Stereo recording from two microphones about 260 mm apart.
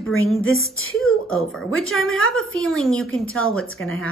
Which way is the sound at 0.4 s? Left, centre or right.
Left.